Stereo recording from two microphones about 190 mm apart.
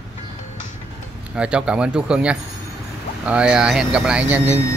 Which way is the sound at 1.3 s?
5° right (ahead or behind).